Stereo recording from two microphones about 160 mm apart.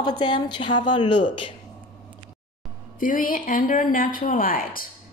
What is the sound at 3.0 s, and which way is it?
Speech, 60° left (ahead or behind).